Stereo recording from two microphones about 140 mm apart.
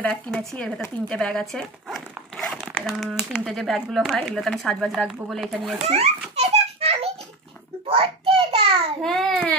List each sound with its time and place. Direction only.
0.0 s speech: 5° left (ahead or behind)
5.9 s a sound: 45° right (ahead or behind)
9.0 s babbling: centre (ahead or behind)